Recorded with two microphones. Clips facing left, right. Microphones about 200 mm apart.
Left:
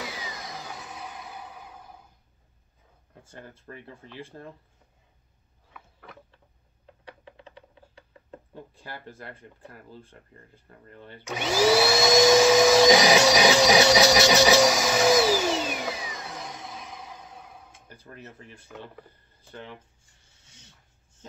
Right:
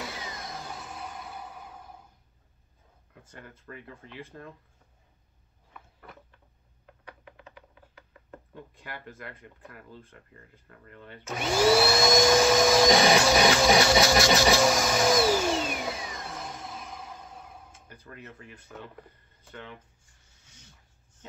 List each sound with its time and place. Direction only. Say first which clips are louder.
0.0 s music: left 1 dB; centre (ahead or behind)
3.2 s speech: left 3 dB; 30° left (ahead or behind)
5.7 s a sound: left 1 dB; centre (ahead or behind)
7.1 s a sound: left 2 dB; 30° left (ahead or behind)
11.2 s vacuum cleaner: left 1 dB; centre (ahead or behind)
17.8 s speech: left 1 dB; 30° left (ahead or behind)